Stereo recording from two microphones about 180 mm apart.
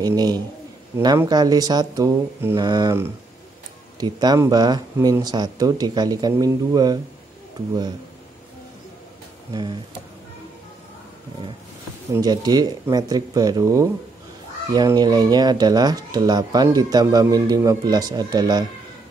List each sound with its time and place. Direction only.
0.0 s speech: 20° right (ahead or behind)
4.0 s speech: 20° right (ahead or behind)
9.5 s speech: 25° right (ahead or behind)
12.1 s speech: 20° right (ahead or behind)